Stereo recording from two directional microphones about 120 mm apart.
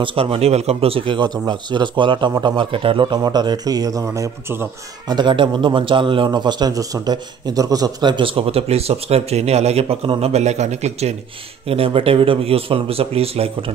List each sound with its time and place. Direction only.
0.0 s a man's voice: 50° right (ahead or behind); by 4.6 s 20° right (ahead or behind)
5.0 s a man's voice: 40° right (ahead or behind); by 11.1 s 65° right (ahead or behind)
11.6 s a man's voice: 55° right (ahead or behind)